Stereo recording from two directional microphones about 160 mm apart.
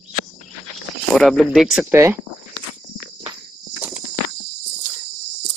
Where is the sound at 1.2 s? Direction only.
Centre (ahead or behind).